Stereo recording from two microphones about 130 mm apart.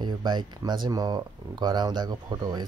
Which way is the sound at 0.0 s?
35° right (ahead or behind).